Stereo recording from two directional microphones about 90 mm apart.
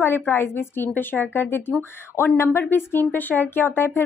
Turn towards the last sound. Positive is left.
turn(degrees=25)  # may be behind; listen again after turning